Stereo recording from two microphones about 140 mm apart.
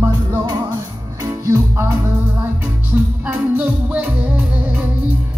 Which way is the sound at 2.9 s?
15° right (ahead or behind).